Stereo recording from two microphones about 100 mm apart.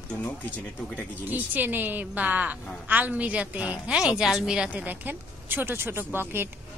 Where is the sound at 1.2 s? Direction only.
20° right (ahead or behind).